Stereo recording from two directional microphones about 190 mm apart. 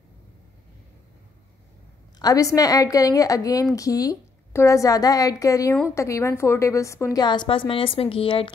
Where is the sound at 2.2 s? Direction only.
20° left (ahead or behind).